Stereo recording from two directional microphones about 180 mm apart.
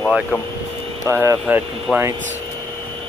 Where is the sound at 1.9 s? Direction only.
Centre (ahead or behind).